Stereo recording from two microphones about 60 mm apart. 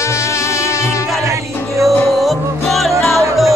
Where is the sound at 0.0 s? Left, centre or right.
Left.